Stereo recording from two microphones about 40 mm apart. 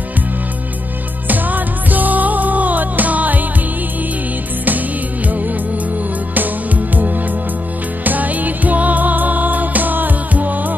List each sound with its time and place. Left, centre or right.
1.2 s music: right
8.0 s music: right